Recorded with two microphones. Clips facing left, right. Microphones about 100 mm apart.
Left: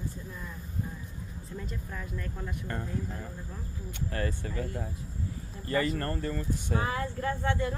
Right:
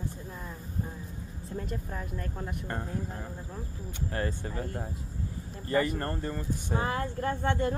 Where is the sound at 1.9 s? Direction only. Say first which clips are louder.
Right 2 dB; 35° right (ahead or behind).